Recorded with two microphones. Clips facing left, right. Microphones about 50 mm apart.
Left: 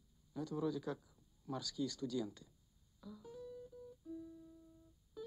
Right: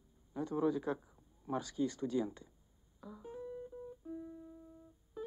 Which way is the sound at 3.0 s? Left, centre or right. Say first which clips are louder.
Right 5 dB; right.